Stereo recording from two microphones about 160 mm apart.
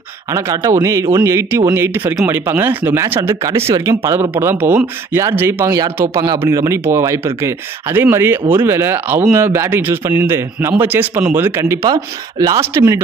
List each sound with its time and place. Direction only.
0.3 s speech: 20° right (ahead or behind)